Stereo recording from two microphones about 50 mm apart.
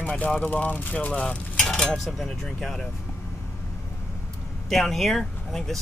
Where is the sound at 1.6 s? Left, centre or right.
Centre.